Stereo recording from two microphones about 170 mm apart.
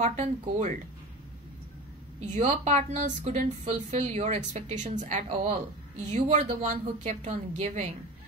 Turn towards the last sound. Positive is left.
turn(degrees=-45)  # may be behind; listen again after turning